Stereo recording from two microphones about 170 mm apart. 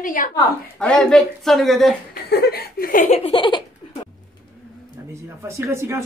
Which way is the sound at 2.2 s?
70° left (ahead or behind).